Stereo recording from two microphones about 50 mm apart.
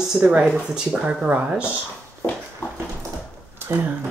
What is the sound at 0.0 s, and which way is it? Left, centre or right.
Speech, centre.